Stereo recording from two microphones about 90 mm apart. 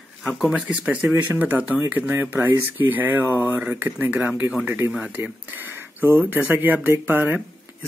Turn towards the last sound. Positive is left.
turn(degrees=-20)  # may be behind; listen again after turning